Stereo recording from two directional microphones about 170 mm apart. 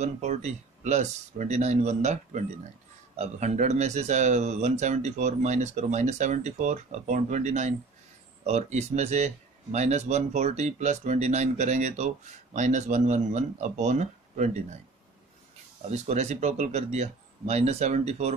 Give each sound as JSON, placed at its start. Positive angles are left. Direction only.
{"t": 0.0, "sound": "speech", "side_deg": -40}
{"t": 15.9, "sound": "speech", "side_deg": -40}